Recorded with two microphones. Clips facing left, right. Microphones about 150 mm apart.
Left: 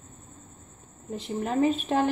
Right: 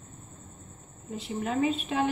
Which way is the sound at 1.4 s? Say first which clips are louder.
Left 3 dB; 45° left (ahead or behind).